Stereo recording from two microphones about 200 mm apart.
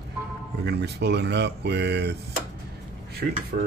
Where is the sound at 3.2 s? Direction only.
55° right (ahead or behind).